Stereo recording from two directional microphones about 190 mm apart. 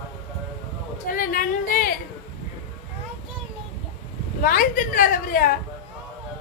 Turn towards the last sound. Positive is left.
turn(degrees=50)  # may be behind; listen again after turning